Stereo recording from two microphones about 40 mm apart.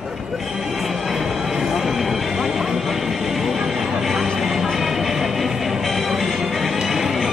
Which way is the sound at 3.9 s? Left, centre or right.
Centre.